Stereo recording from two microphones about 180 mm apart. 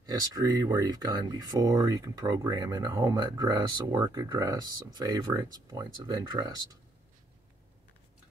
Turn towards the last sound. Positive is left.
turn(degrees=-25)  # may be behind; listen again after turning